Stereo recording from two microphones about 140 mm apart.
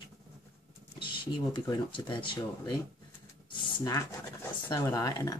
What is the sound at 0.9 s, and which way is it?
Speech, 35° left (ahead or behind).